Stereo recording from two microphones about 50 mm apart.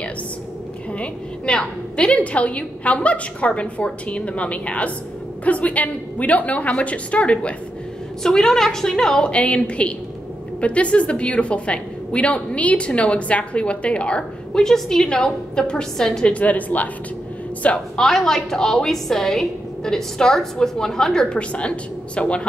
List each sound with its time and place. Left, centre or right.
0.9 s a woman's voice: centre
8.2 s a woman's voice: centre
9.3 s a woman's voice: left
16.3 s a woman's voice: left
17.9 s a woman's voice: centre